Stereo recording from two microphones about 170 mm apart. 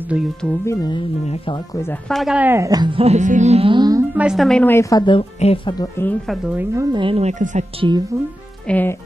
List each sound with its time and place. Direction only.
0.1 s speech: 5° right (ahead or behind)
0.7 s speech: 25° left (ahead or behind)
1.2 s speech: 35° left (ahead or behind)
2.0 s speech: centre (ahead or behind); by 4.0 s 25° right (ahead or behind)
4.1 s speech: 5° right (ahead or behind); by 5.8 s 35° left (ahead or behind)
5.8 s speech: 15° left (ahead or behind)
6.5 s speech: 15° right (ahead or behind); by 7.6 s 45° right (ahead or behind)
8.6 s speech: 10° left (ahead or behind)